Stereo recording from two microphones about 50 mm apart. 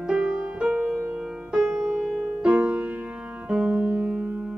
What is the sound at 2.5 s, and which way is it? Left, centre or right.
Music, right.